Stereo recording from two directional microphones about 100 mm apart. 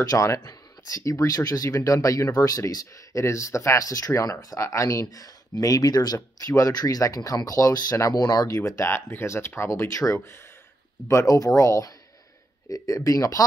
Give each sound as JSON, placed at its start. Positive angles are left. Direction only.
{"t": 0.0, "sound": "speech", "side_deg": 35}
{"t": 8.5, "sound": "speech", "side_deg": 30}